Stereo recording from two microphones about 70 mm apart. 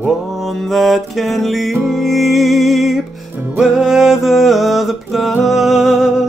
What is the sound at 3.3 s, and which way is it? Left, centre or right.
Music, right.